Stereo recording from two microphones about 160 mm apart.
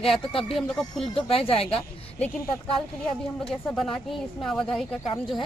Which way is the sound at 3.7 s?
5° left (ahead or behind).